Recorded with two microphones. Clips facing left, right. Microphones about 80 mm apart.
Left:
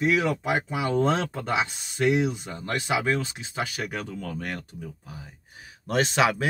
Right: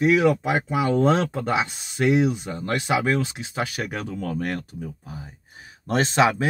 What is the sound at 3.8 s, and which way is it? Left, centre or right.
Speech, right.